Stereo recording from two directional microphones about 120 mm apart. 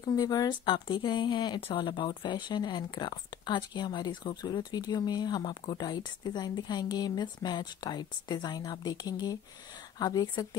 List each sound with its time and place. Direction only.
0.0 s speech: 30° left (ahead or behind)
0.7 s speech: 45° left (ahead or behind)